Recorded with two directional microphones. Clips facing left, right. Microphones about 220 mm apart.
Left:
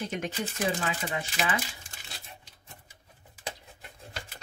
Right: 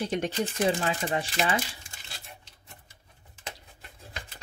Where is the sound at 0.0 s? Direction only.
35° right (ahead or behind).